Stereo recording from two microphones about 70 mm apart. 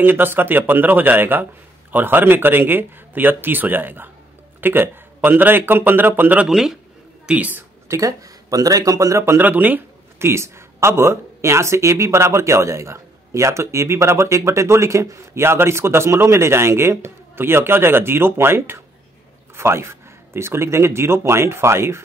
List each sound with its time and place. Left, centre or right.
0.0 s speech: right
6.4 s speech: centre
7.2 s speech: right
7.9 s speech: right
9.4 s speech: right